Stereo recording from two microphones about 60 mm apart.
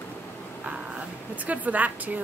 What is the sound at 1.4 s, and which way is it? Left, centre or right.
Speech, right.